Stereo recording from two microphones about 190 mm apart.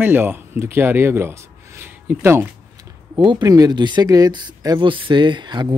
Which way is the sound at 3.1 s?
20° right (ahead or behind).